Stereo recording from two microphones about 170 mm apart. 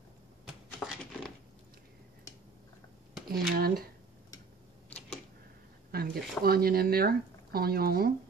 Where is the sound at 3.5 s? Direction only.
60° right (ahead or behind).